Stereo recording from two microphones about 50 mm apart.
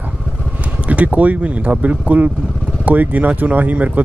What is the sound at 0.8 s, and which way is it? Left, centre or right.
Speech, right.